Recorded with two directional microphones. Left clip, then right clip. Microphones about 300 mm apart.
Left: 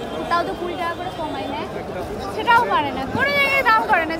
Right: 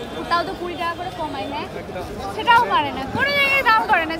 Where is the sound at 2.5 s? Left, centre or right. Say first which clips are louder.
Right 1 dB; centre.